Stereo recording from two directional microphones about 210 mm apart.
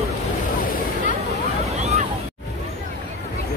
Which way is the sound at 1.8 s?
35° right (ahead or behind).